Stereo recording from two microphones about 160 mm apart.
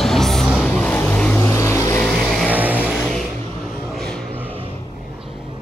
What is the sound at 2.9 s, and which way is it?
Vehicle, 5° left (ahead or behind).